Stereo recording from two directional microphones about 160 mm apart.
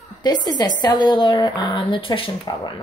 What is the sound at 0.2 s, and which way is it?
Speech, 25° left (ahead or behind).